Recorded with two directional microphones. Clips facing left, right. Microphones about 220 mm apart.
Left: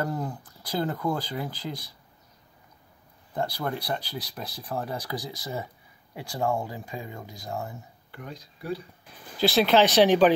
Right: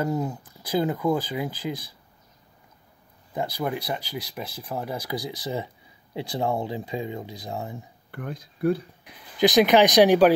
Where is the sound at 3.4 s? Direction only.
10° right (ahead or behind).